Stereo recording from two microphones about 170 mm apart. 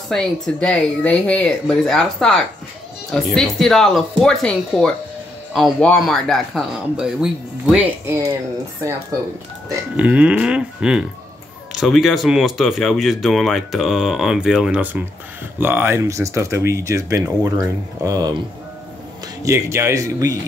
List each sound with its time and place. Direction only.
0.1 s speech: 5° left (ahead or behind); by 8.3 s 15° right (ahead or behind)
9.9 s speech: 5° right (ahead or behind)
19.4 s speech: 15° right (ahead or behind)